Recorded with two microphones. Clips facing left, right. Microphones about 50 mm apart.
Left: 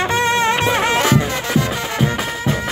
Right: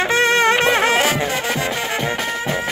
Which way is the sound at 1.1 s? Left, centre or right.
Centre.